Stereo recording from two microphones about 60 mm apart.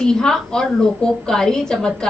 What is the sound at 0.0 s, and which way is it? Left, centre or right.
A woman's voice, centre.